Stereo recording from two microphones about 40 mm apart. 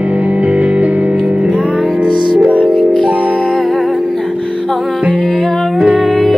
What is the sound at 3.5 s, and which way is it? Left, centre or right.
Music, centre.